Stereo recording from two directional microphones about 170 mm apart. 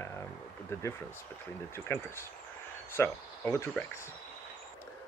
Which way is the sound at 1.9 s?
15° left (ahead or behind).